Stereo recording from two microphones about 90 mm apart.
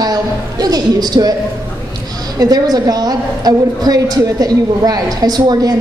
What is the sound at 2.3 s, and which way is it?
A woman's voice, 45° right (ahead or behind).